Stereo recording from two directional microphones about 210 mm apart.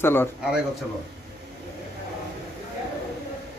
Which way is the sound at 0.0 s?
10° left (ahead or behind).